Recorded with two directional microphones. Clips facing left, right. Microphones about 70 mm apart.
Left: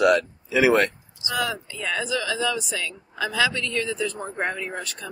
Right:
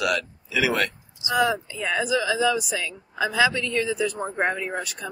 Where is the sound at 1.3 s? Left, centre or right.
Right.